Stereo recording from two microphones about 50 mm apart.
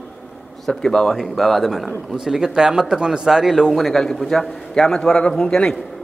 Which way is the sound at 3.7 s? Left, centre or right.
Centre.